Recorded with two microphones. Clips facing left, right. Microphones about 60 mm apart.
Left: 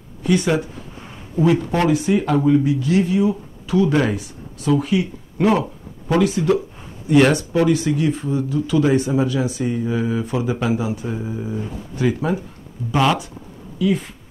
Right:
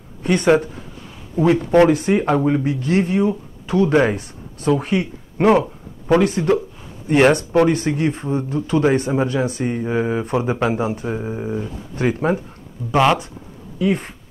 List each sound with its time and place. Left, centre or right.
0.2 s speech: right
1.9 s speech: right
7.1 s speech: right
7.3 s speech: right
11.1 s speech: right
12.9 s speech: right
13.7 s speech: right